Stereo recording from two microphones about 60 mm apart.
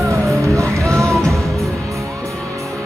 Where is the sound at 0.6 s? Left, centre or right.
Right.